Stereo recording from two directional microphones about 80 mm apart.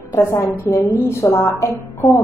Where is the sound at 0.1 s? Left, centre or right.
Left.